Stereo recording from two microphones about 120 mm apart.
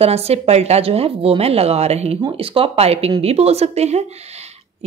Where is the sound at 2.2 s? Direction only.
45° right (ahead or behind).